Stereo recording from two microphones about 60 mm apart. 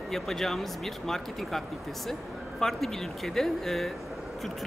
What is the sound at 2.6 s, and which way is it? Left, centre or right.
Speech, centre.